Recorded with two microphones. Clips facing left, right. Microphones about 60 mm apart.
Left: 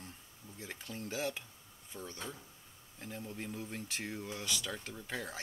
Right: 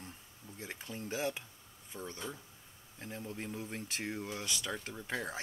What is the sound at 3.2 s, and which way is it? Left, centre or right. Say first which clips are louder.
Speech: right 1 dB; centre.